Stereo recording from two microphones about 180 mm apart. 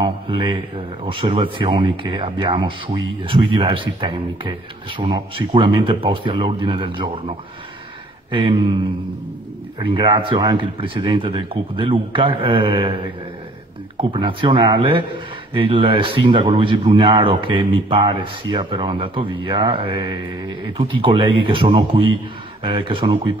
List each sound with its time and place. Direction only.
0.0 s a man's voice: 25° right (ahead or behind)
9.8 s a man's voice: 30° right (ahead or behind)
14.1 s a man's voice: 25° right (ahead or behind)